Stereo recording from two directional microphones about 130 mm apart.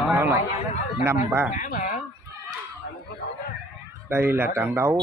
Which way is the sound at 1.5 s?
85° left.